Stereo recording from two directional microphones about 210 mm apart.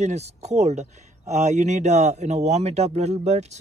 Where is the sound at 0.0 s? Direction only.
30° right (ahead or behind).